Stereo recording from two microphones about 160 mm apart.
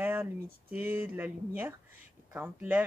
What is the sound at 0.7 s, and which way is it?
Speech, 10° right (ahead or behind).